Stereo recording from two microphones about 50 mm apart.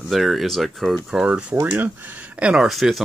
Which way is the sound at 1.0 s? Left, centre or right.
Centre.